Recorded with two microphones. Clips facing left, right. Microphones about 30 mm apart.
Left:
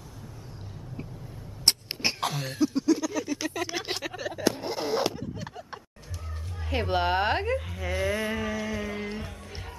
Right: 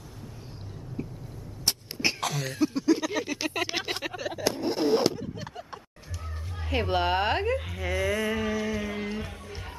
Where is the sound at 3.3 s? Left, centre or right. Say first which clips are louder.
Right 1 dB; right.